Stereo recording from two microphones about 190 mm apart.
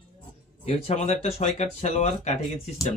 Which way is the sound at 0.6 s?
35° left (ahead or behind).